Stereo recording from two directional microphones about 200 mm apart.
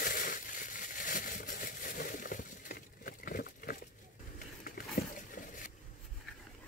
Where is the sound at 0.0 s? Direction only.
45° left (ahead or behind).